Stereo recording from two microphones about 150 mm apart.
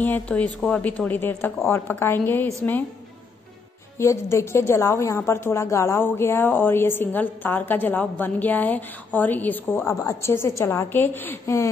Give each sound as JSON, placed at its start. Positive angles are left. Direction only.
{"t": 0.0, "sound": "a woman's voice", "side_deg": 10}
{"t": 4.0, "sound": "a woman's voice", "side_deg": 20}